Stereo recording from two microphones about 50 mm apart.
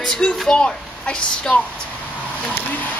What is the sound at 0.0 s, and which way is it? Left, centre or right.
Speech, centre.